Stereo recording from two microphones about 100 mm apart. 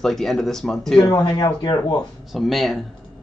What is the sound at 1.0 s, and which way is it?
Speech, 40° left (ahead or behind).